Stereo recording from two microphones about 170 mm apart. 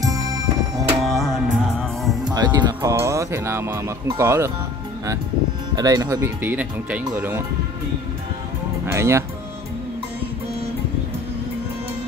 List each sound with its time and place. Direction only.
0.0 s music: 20° right (ahead or behind)
0.8 s music: centre (ahead or behind)
2.3 s speech: 25° right (ahead or behind)
5.8 s speech: 20° right (ahead or behind)
8.8 s speech: 15° right (ahead or behind)